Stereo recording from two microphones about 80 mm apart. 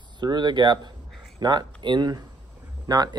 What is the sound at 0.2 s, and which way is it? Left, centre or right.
Speech, right.